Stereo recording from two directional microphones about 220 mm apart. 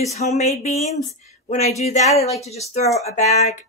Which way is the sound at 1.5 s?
30° left (ahead or behind).